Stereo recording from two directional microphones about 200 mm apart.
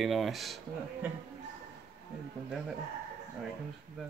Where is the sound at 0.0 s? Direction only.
Centre (ahead or behind).